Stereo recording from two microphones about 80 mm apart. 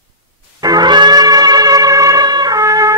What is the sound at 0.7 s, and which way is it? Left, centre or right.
Brass instrument, right.